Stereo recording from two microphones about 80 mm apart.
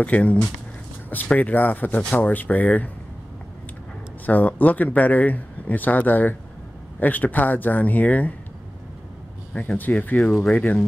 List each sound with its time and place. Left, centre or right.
0.0 s speech: centre
4.3 s speech: left
9.5 s speech: centre
10.2 s speech: centre
10.5 s speech: centre